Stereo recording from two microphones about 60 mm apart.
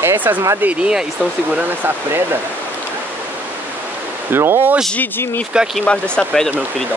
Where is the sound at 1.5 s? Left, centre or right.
Right.